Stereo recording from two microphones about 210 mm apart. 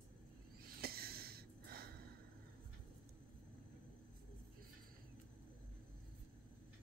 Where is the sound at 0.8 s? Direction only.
45° right (ahead or behind).